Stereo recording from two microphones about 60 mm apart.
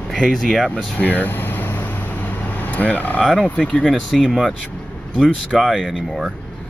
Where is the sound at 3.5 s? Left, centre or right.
Centre.